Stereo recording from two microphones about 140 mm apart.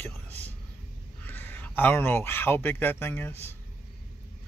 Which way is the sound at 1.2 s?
15° left (ahead or behind).